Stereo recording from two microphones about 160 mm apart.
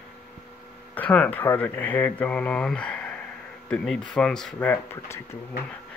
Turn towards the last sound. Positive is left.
turn(degrees=15)  # may be behind; listen again after turning